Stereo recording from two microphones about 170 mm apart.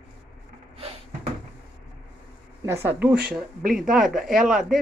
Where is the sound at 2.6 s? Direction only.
15° right (ahead or behind).